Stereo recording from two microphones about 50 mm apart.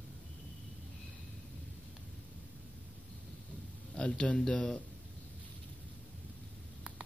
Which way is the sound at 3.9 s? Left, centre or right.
Centre.